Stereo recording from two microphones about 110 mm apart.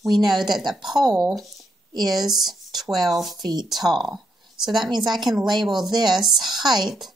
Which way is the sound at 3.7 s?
Centre (ahead or behind).